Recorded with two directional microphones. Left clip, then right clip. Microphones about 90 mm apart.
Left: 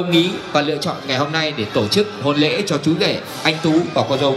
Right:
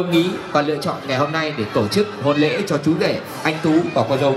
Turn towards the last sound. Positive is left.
turn(degrees=20)  # may be behind; listen again after turning